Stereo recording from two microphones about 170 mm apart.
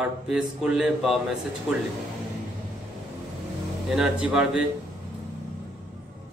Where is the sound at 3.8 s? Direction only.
5° right (ahead or behind).